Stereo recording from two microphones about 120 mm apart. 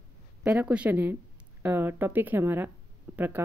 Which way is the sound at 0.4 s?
10° right (ahead or behind).